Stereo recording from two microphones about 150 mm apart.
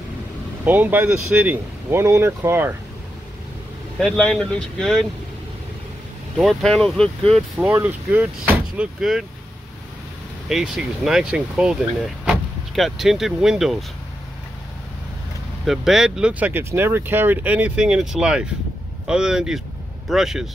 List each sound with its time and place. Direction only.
0.7 s speech: 10° right (ahead or behind)
4.0 s speech: 5° left (ahead or behind)
6.3 s speech: centre (ahead or behind)
7.7 s speech: 10° right (ahead or behind)
10.5 s speech: 5° right (ahead or behind)
15.6 s speech: centre (ahead or behind)